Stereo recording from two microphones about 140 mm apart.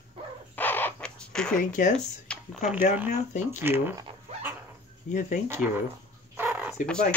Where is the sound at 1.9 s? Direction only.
5° left (ahead or behind).